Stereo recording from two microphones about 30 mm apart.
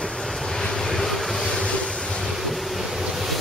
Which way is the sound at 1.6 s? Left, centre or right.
Left.